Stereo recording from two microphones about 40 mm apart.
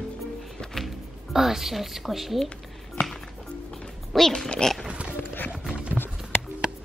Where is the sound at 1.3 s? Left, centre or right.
Centre.